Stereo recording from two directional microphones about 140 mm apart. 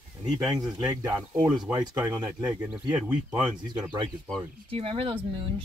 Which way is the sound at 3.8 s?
30° right (ahead or behind).